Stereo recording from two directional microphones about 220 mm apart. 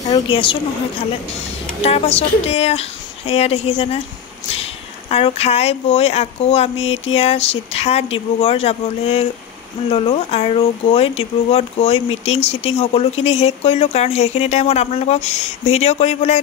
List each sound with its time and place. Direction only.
0.0 s speech: 25° left (ahead or behind)
1.8 s speech: 30° left (ahead or behind)
5.1 s speech: 30° left (ahead or behind)